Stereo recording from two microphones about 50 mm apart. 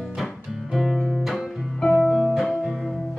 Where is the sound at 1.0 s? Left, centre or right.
Centre.